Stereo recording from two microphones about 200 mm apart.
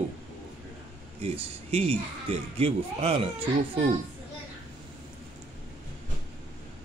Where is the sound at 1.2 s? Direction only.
30° right (ahead or behind).